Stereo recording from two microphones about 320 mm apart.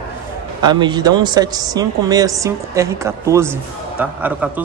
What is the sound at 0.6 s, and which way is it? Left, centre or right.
A man's voice, centre.